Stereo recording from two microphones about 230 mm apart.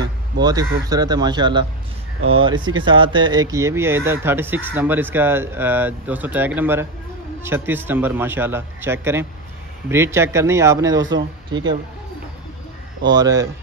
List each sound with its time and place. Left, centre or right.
0.4 s speech: centre
13.1 s speech: centre